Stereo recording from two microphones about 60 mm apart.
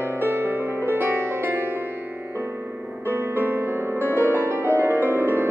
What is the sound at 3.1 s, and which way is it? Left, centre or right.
Music, right.